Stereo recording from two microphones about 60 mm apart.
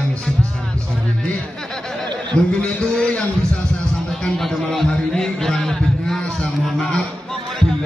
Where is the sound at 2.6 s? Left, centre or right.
Centre.